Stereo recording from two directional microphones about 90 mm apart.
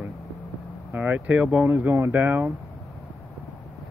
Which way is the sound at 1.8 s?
25° right (ahead or behind).